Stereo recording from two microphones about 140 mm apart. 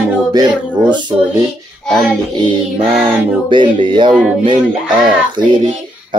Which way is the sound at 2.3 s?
35° right (ahead or behind).